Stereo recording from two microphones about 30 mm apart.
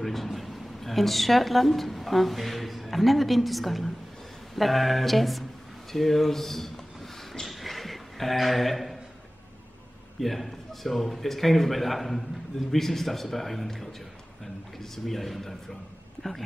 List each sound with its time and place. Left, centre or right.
0.0 s speech: centre
7.4 s a sound: centre
10.2 s a man's voice: centre